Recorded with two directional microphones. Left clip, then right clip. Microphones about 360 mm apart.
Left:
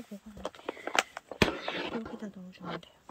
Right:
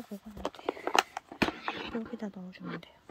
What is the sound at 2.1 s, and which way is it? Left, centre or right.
Speech, centre.